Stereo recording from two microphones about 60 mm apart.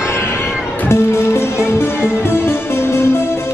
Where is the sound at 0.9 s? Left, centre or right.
Left.